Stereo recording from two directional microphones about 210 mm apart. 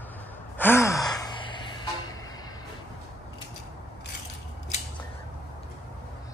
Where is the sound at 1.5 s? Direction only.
20° left (ahead or behind).